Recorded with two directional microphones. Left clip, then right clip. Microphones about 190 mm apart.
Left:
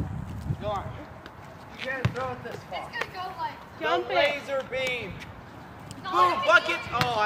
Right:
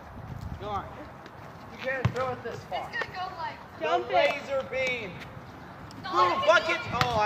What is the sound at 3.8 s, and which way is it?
Speech, 45° left (ahead or behind).